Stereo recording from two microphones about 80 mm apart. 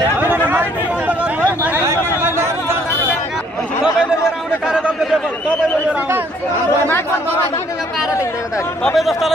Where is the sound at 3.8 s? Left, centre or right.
Centre.